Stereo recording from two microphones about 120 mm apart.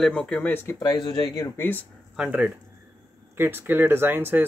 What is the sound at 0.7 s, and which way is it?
Speech, 40° left (ahead or behind).